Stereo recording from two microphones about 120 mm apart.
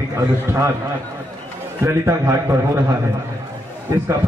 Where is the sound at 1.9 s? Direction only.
25° right (ahead or behind).